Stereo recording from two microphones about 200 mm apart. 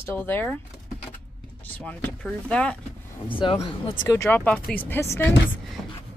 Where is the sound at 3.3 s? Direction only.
25° left (ahead or behind).